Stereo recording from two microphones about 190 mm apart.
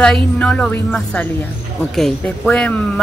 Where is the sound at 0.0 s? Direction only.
5° left (ahead or behind).